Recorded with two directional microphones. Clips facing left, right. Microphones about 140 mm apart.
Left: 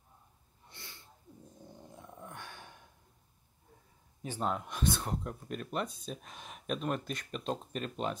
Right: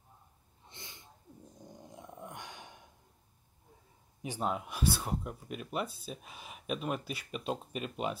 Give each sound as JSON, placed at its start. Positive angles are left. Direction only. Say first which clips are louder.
{"t": 0.7, "sound": "sneeze", "louder": "right 1 dB", "side_deg": -20}
{"t": 1.6, "sound": "dog", "louder": "right 2 dB", "side_deg": -15}
{"t": 4.2, "sound": "speech", "louder": "even", "side_deg": -10}